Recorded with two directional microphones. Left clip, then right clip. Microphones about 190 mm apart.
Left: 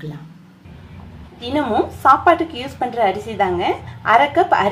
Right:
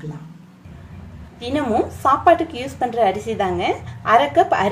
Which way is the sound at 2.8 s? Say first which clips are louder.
Even; 10° right (ahead or behind).